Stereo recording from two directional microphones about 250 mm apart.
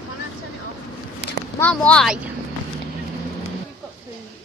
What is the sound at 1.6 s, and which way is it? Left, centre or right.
Speech, centre.